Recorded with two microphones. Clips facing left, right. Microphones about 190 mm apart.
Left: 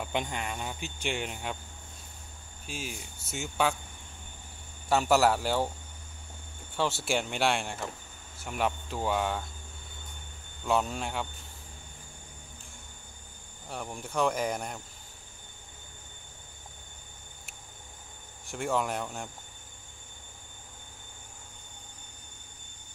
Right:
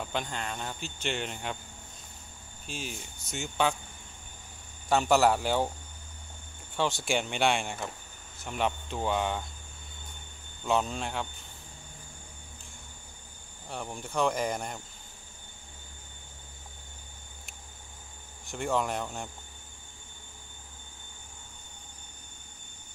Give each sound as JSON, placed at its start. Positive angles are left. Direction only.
{"t": 0.0, "sound": "speech", "side_deg": 15}
{"t": 2.6, "sound": "speech", "side_deg": 5}
{"t": 4.8, "sound": "speech", "side_deg": 5}
{"t": 6.8, "sound": "speech", "side_deg": 5}
{"t": 10.7, "sound": "speech", "side_deg": 5}
{"t": 13.7, "sound": "speech", "side_deg": 5}
{"t": 18.5, "sound": "speech", "side_deg": 5}